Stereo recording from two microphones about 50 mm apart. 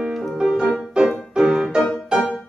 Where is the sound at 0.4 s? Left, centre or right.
Centre.